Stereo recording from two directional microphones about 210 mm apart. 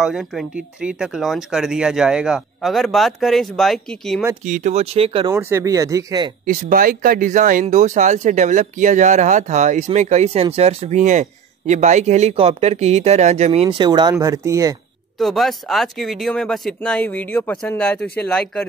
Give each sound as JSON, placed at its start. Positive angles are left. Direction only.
{"t": 0.0, "sound": "speech", "side_deg": 0}
{"t": 4.5, "sound": "speech", "side_deg": -35}
{"t": 5.3, "sound": "speech", "side_deg": -15}
{"t": 6.4, "sound": "speech", "side_deg": -40}
{"t": 15.1, "sound": "speech", "side_deg": 0}